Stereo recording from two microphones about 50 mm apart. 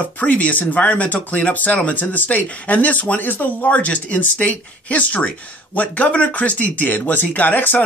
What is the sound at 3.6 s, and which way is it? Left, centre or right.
Speech, left.